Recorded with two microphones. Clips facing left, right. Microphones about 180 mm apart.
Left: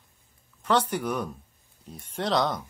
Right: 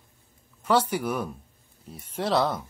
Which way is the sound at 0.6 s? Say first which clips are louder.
Right 1 dB; 10° right (ahead or behind).